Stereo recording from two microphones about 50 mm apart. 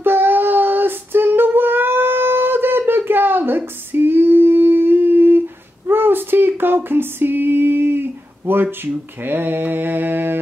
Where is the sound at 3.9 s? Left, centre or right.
Right.